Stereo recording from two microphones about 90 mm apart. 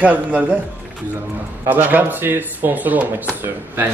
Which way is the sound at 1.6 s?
20° right (ahead or behind).